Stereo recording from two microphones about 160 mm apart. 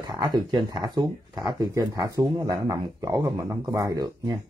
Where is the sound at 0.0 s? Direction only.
25° right (ahead or behind).